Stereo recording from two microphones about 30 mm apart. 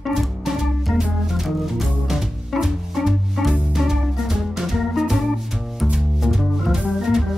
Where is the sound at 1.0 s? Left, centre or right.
Centre.